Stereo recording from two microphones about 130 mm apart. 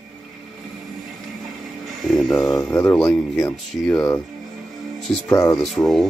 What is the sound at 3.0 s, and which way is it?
Speech, centre (ahead or behind).